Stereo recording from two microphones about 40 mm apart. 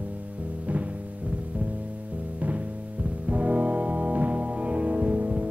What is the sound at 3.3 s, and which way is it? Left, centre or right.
Music, right.